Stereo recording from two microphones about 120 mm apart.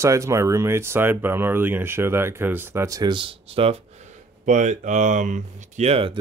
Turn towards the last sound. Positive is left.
turn(degrees=-55)  # may be behind; listen again after turning